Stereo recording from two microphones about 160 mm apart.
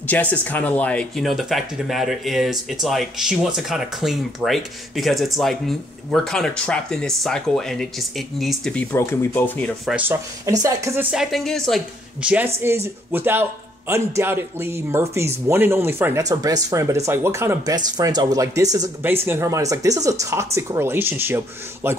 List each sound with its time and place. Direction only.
0.0 s speech: 10° left (ahead or behind)
8.9 s speech: 15° left (ahead or behind)
9.8 s speech: 10° right (ahead or behind)
10.5 s speech: 20° right (ahead or behind)
11.1 s speech: centre (ahead or behind)